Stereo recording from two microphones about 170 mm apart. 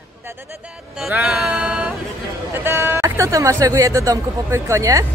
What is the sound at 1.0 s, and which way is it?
Music, 5° right (ahead or behind).